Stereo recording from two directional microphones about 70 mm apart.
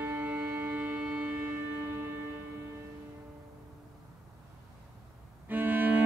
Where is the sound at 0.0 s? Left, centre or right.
Right.